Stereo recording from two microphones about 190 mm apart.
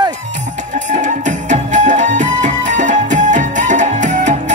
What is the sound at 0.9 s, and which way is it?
Music, 40° right (ahead or behind).